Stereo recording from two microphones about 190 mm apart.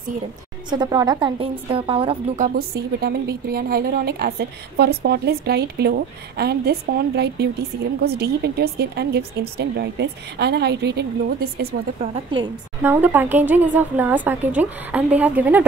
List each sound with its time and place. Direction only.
0.7 s a woman's voice: 20° right (ahead or behind)
2.3 s a woman's voice: 50° right (ahead or behind)
12.0 s a woman's voice: 25° right (ahead or behind)
12.8 s a woman's voice: 10° right (ahead or behind)